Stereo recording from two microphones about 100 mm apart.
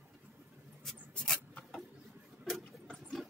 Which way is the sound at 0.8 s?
10° left (ahead or behind).